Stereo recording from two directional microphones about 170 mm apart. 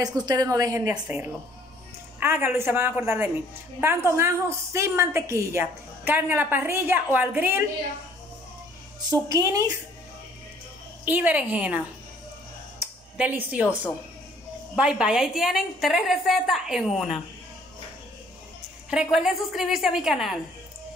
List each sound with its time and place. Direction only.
0.0 s a woman's voice: 25° right (ahead or behind)
9.1 s a woman's voice: 20° right (ahead or behind)
11.1 s a woman's voice: 10° right (ahead or behind)
13.2 s a woman's voice: 10° right (ahead or behind)
14.8 s a woman's voice: 5° right (ahead or behind)
19.1 s a woman's voice: centre (ahead or behind)